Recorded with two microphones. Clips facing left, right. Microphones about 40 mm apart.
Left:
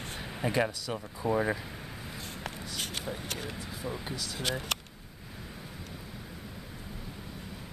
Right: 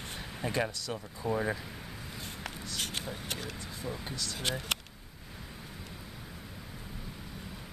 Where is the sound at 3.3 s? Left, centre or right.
Centre.